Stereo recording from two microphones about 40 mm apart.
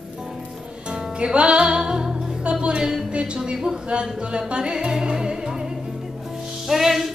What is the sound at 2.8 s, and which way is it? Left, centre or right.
Music, centre.